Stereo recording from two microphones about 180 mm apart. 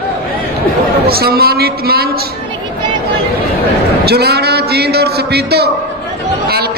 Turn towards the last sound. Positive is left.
turn(degrees=-60)  # may be behind; listen again after turning